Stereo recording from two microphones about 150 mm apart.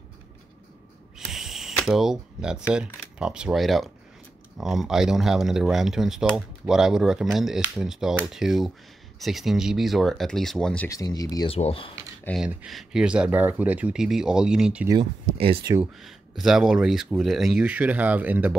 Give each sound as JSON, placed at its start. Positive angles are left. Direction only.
{"t": 1.1, "sound": "speech", "side_deg": 0}
{"t": 10.9, "sound": "speech", "side_deg": 25}
{"t": 11.4, "sound": "speech", "side_deg": 40}
{"t": 12.4, "sound": "speech", "side_deg": 0}
{"t": 15.3, "sound": "speech", "side_deg": -35}
{"t": 15.8, "sound": "speech", "side_deg": 0}